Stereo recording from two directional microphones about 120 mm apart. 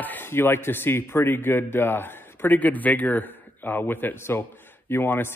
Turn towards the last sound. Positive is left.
turn(degrees=20)  # may be behind; listen again after turning